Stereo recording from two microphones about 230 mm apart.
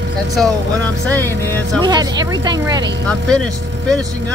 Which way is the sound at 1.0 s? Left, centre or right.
Centre.